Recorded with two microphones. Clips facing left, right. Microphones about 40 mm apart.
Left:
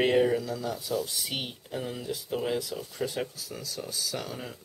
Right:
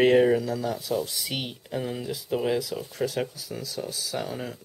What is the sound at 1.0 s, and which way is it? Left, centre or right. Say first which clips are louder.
Speech: right 2 dB; centre.